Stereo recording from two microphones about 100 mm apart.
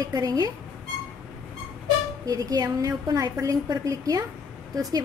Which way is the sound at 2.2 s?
40° right (ahead or behind).